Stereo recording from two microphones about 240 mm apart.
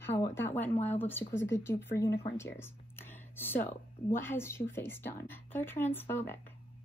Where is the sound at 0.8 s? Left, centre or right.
Centre.